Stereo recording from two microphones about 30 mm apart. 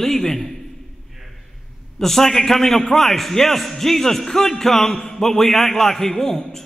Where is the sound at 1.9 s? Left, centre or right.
Centre.